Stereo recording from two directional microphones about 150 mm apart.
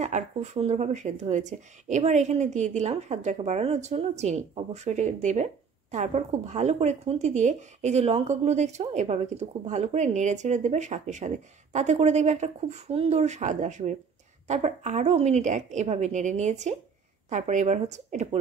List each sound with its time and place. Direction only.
0.0 s speech: 50° right (ahead or behind)